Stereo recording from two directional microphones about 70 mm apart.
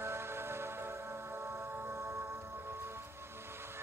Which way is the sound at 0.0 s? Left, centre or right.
Right.